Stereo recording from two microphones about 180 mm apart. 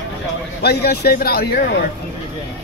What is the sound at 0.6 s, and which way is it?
Speech, 65° left (ahead or behind).